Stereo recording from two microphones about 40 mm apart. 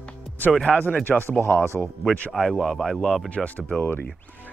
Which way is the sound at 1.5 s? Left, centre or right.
Left.